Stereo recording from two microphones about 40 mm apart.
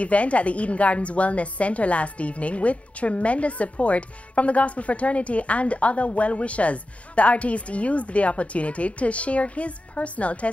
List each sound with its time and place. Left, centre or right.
0.0 s a woman's voice: left